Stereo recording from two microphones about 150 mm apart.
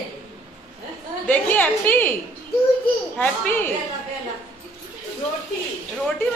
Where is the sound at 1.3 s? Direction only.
10° left (ahead or behind).